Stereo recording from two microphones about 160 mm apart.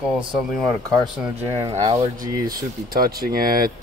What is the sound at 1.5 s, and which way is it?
Speech, 20° right (ahead or behind).